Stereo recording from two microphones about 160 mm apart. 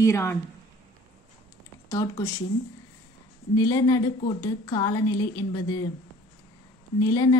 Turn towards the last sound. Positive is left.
turn(degrees=20)  # may be behind; listen again after turning